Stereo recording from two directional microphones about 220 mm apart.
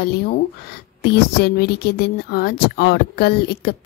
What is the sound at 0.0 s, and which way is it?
Speech, 45° left (ahead or behind).